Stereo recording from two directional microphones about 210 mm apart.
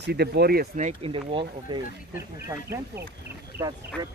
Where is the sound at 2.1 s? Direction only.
10° right (ahead or behind).